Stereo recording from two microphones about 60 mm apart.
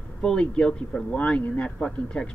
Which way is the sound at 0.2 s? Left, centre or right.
Centre.